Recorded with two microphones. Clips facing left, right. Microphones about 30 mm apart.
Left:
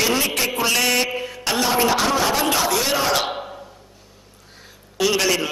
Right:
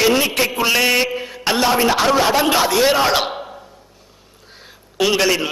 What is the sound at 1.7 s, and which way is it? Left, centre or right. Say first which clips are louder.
Speech: right 2 dB; centre.